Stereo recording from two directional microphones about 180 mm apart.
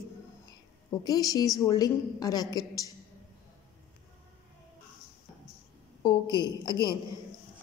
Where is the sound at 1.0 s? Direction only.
20° left (ahead or behind).